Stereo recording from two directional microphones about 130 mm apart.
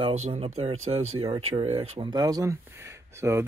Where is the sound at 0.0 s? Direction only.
55° right (ahead or behind).